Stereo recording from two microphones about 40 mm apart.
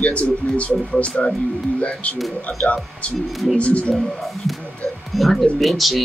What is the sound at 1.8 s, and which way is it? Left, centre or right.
Speech, left.